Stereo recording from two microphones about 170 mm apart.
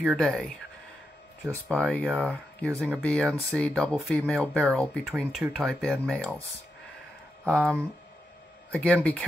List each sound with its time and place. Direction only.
0.0 s speech: centre (ahead or behind)
1.7 s speech: 5° left (ahead or behind)
7.4 s speech: 5° left (ahead or behind)